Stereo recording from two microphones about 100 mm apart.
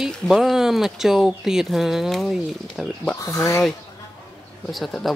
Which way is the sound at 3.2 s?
30° left (ahead or behind).